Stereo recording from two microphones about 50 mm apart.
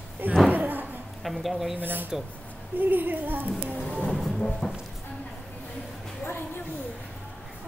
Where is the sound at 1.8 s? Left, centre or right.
Right.